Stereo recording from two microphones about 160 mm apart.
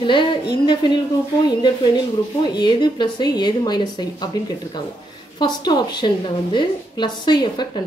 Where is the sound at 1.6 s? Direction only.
25° left (ahead or behind).